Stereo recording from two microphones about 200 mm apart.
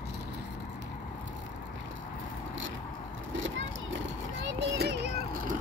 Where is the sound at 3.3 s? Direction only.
70° right (ahead or behind).